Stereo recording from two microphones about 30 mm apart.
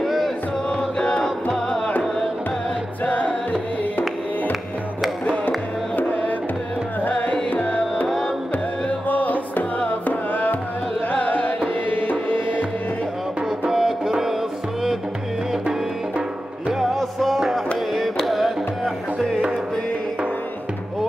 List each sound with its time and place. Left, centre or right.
0.0 s chant: centre
0.7 s music: left
1.2 s music: centre
3.1 s music: left
7.0 s music: left
9.0 s music: left
9.8 s music: left
11.1 s music: left
11.9 s music: left
13.7 s music: centre
16.9 s music: centre